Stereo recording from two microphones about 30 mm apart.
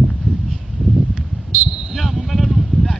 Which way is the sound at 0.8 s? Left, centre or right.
Left.